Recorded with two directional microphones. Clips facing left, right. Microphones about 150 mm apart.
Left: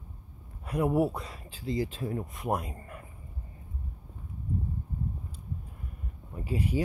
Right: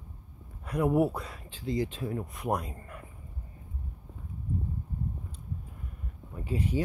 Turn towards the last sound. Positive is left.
turn(degrees=10)  # may be behind; listen again after turning